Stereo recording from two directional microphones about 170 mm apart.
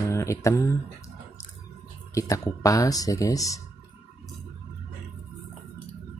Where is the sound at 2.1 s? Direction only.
20° left (ahead or behind).